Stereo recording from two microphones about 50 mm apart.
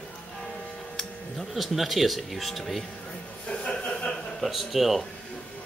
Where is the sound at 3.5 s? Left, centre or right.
Centre.